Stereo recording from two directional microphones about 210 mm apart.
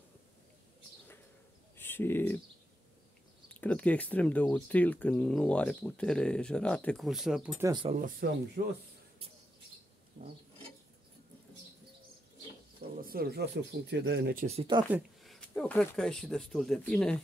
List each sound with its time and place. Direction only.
1.8 s speech: 10° left (ahead or behind)
3.6 s speech: 5° left (ahead or behind)
7.6 s speech: 20° right (ahead or behind)
8.2 s speech: 50° right (ahead or behind)
10.2 s a sound: 50° right (ahead or behind)
13.0 s speech: 45° right (ahead or behind)
14.9 s speech: centre (ahead or behind)